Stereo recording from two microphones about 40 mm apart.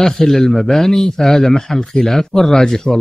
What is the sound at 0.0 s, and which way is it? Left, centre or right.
Speech, centre.